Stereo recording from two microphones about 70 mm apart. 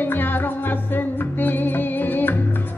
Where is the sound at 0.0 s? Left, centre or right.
Left.